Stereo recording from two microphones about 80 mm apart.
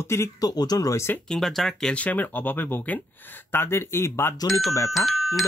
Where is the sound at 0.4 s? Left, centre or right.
Left.